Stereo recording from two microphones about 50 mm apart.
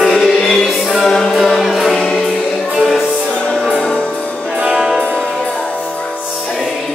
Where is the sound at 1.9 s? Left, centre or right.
Centre.